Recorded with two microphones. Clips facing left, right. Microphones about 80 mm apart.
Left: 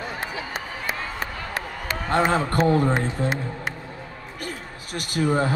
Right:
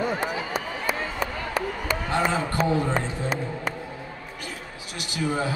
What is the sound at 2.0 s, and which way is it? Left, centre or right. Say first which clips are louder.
Speech: left 5 dB; left.